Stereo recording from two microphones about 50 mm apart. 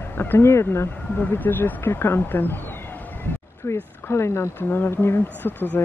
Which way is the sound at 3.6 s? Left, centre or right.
Left.